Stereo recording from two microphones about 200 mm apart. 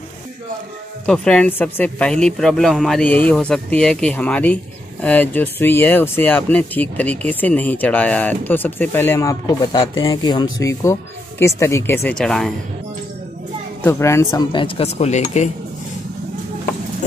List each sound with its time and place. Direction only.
1.0 s speech: 5° left (ahead or behind)
13.8 s speech: 15° left (ahead or behind); by 15.5 s 35° left (ahead or behind)